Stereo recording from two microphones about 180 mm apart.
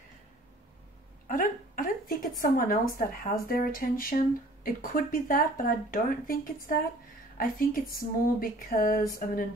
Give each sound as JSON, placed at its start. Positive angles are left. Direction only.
{"t": 1.2, "sound": "a woman's voice", "side_deg": 50}